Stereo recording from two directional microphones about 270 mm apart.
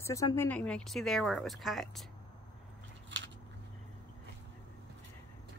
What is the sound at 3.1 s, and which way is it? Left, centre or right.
Scissors, right.